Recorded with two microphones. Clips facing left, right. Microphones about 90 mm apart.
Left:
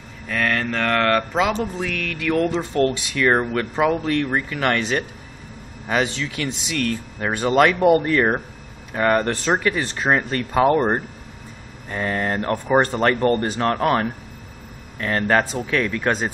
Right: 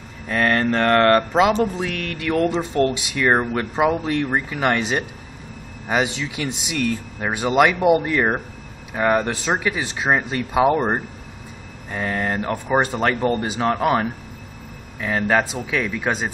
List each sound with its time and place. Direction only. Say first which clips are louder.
0.3 s speech: right 4 dB; 30° right (ahead or behind)
2.5 s speech: even; 20° right (ahead or behind)